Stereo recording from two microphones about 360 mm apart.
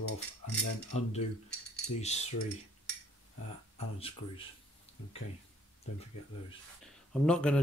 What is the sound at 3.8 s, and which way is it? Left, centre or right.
Typing, centre.